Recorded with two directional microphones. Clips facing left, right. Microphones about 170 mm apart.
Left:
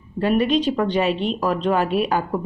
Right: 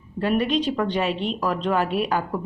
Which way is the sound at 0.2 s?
15° left (ahead or behind).